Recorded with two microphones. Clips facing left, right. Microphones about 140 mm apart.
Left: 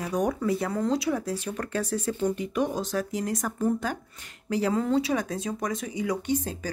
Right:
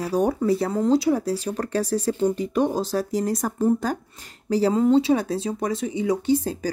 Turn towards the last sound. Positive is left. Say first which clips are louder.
# right 7 dB
turn(degrees=-30)  # may be behind; listen again after turning